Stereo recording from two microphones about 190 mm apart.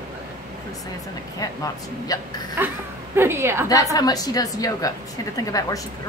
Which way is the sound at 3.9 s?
20° left (ahead or behind).